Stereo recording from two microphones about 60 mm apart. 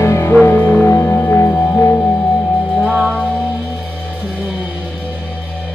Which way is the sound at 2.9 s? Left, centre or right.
Centre.